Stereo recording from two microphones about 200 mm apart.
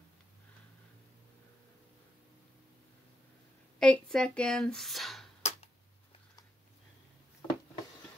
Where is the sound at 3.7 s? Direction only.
5° left (ahead or behind).